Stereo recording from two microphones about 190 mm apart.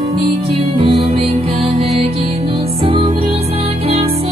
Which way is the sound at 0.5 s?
30° right (ahead or behind).